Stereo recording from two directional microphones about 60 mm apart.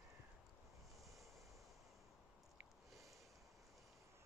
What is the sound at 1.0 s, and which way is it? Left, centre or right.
Vehicle, centre.